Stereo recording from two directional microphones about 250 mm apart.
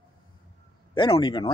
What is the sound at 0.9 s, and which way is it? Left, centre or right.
Speech, left.